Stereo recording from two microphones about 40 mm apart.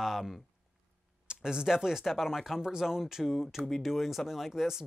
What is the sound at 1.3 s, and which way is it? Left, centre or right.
Speech, centre.